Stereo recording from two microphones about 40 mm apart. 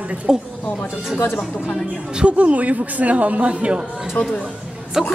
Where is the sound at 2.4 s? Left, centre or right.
Right.